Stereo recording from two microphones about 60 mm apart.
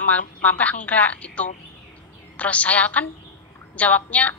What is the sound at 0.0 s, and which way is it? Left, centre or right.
A woman's voice, left.